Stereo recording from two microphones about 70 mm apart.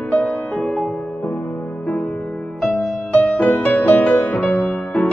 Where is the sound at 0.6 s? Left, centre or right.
Centre.